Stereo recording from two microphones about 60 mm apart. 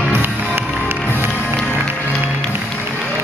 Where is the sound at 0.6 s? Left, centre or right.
Right.